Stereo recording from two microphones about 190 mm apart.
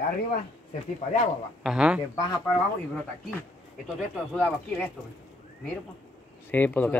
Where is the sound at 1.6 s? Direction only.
5° right (ahead or behind).